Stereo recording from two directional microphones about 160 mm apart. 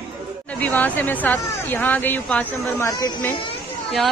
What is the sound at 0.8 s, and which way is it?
Speech, 10° left (ahead or behind).